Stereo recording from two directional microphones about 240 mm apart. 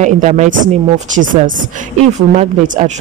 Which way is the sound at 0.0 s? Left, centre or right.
Right.